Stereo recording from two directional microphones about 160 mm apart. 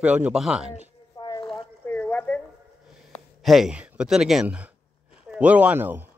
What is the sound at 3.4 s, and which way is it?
Speech, centre (ahead or behind).